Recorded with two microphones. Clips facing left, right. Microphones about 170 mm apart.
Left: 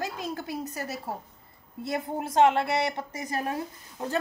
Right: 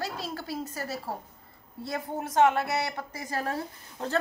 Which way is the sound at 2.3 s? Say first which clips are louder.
Left 2 dB; 25° left (ahead or behind).